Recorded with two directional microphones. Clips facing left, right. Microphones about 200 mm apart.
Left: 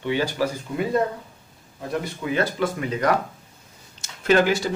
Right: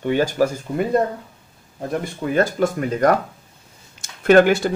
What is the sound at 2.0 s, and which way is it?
Speech, 45° right (ahead or behind).